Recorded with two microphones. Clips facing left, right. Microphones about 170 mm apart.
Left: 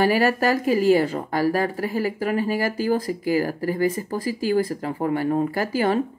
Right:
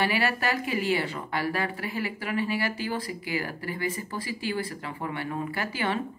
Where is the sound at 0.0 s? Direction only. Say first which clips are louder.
Left 8 dB; 40° left (ahead or behind).